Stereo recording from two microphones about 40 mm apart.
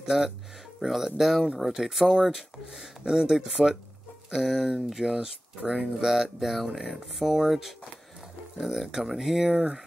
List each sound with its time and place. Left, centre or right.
0.7 s speech: centre
5.6 s speech: right
5.9 s speech: centre
6.7 s speech: centre
7.2 s speech: centre